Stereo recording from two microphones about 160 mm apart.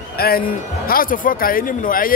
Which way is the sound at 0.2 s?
65° left (ahead or behind).